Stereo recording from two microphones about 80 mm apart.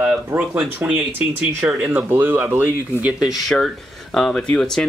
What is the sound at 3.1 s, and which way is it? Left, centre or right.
Speech, centre.